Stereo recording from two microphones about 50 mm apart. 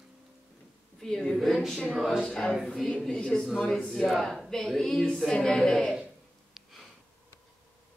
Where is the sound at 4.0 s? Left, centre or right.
Centre.